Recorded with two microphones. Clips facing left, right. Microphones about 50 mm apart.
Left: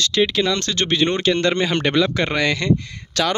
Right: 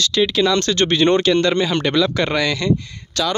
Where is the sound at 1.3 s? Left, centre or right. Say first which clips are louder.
Right 2 dB; left.